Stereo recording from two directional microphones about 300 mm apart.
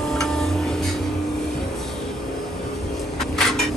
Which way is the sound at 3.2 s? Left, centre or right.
Centre.